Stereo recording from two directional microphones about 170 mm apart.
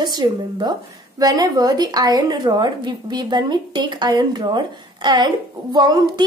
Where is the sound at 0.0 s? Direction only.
25° right (ahead or behind).